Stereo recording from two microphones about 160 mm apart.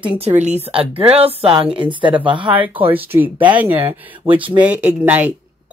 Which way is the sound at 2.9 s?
10° right (ahead or behind).